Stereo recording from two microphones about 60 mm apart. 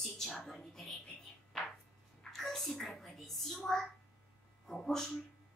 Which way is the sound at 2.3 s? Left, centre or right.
Centre.